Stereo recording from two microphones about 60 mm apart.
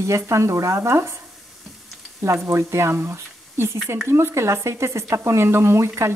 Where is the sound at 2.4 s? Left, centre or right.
Right.